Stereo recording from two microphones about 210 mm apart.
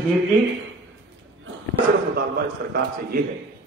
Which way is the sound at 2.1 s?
50° right (ahead or behind).